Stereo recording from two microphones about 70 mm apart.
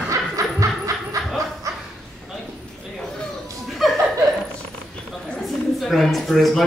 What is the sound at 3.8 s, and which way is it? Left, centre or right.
Chuckle, centre.